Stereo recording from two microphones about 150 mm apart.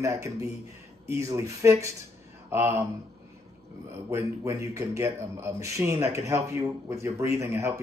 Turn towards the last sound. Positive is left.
turn(degrees=-20)  # may be behind; listen again after turning